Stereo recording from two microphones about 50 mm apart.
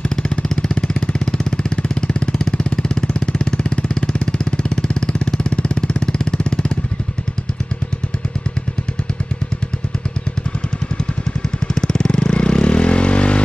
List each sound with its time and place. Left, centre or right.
0.1 s vehicle: centre
11.6 s vehicle: centre